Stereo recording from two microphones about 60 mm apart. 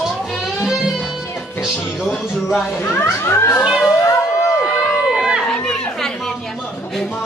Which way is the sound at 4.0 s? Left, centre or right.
Left.